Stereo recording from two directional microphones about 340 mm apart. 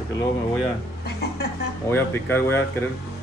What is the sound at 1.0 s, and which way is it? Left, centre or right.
Music, left.